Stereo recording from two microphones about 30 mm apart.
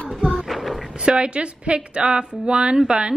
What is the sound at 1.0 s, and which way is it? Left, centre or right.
A woman's voice, right.